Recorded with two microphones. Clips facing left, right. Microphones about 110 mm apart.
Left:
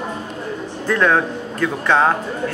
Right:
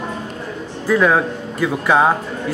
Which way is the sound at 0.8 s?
5° right (ahead or behind).